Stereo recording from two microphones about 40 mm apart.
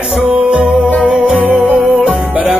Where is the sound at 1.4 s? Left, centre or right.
Right.